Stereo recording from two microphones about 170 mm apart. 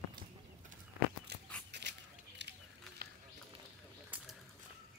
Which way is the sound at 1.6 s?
90° right.